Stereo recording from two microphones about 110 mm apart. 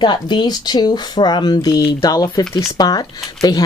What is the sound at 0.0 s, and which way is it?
Speech, 40° left (ahead or behind).